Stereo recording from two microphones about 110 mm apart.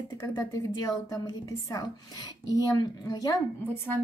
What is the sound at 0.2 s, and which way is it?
A woman's voice, 25° left (ahead or behind).